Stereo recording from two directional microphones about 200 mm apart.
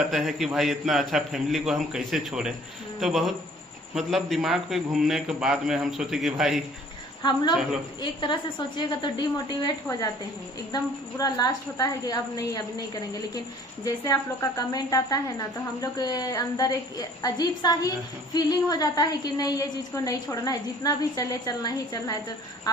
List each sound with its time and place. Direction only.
0.1 s a man's voice: centre (ahead or behind)
8.0 s a woman's voice: 25° left (ahead or behind)